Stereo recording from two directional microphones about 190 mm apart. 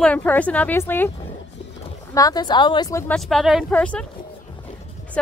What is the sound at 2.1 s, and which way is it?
A woman's voice, 20° left (ahead or behind).